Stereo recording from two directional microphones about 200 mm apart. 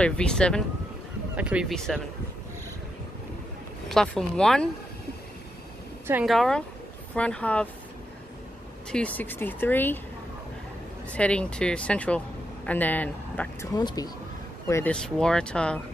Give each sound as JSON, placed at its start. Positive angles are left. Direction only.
{"t": 0.0, "sound": "speech", "side_deg": 5}
{"t": 3.9, "sound": "speech", "side_deg": 5}
{"t": 6.0, "sound": "speech", "side_deg": -5}
{"t": 8.9, "sound": "speech", "side_deg": 5}
{"t": 11.1, "sound": "speech", "side_deg": 5}
{"t": 13.7, "sound": "speech", "side_deg": 20}
{"t": 14.7, "sound": "speech", "side_deg": 10}